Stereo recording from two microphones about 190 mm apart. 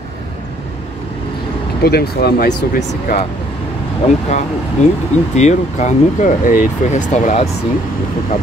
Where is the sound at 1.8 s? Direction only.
55° left (ahead or behind).